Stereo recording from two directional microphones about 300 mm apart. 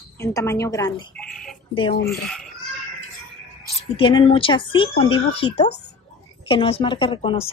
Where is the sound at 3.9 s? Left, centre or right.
Centre.